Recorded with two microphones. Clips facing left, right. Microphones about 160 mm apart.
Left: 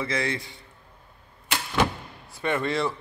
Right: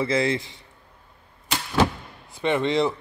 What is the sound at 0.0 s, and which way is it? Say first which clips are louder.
Speech: right 6 dB; 25° right (ahead or behind).